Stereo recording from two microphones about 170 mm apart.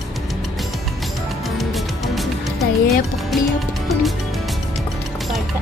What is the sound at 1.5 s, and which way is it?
Music, centre (ahead or behind).